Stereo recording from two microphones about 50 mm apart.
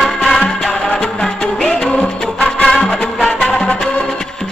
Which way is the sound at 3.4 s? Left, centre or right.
Centre.